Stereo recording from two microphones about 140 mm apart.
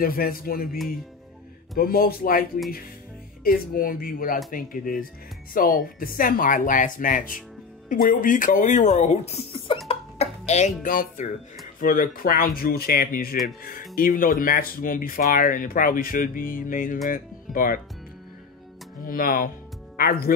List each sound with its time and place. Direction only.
0.0 s speech: 90° left
1.8 s speech: 90° left; by 9.8 s 45° left (ahead or behind)
9.8 s music: 50° left (ahead or behind); by 11.2 s 70° left (ahead or behind)
11.8 s speech: 80° left
19.0 s speech: 90° left